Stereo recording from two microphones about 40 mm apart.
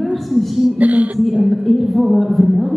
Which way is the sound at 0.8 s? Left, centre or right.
Right.